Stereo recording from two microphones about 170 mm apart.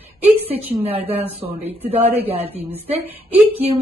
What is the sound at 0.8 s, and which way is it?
Speech, 35° right (ahead or behind).